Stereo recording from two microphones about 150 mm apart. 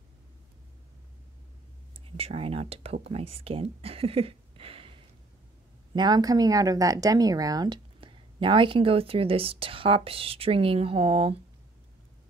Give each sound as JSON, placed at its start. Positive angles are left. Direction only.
{"t": 2.0, "sound": "speech", "side_deg": -40}
{"t": 5.9, "sound": "speech", "side_deg": -25}